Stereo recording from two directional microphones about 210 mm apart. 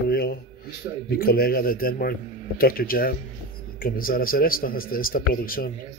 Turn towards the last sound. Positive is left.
turn(degrees=45)  # may be behind; listen again after turning